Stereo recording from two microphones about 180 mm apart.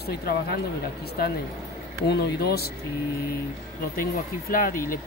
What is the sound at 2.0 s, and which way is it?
Speech, 65° left (ahead or behind).